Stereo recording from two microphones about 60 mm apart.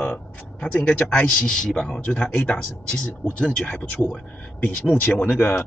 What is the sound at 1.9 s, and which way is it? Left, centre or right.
Speech, left.